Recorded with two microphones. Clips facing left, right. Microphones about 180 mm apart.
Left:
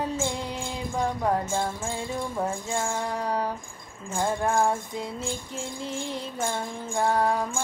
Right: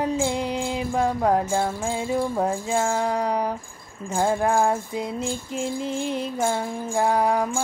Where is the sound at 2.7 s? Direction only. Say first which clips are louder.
Right 7 dB; 80° right.